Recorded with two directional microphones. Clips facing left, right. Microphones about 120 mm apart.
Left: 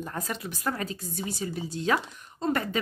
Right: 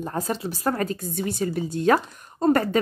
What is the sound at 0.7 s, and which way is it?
Speech, 50° right (ahead or behind).